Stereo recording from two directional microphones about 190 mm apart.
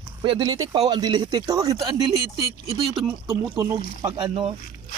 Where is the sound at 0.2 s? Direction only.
25° right (ahead or behind).